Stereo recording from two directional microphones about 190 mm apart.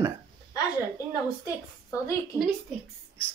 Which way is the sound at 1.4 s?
15° left (ahead or behind).